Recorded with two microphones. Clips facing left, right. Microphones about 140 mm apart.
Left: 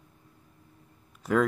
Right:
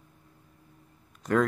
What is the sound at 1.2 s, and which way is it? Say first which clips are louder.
Speech: even; 5° left (ahead or behind).